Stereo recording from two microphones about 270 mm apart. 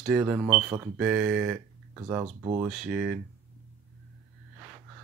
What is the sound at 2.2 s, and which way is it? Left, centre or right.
Speech, right.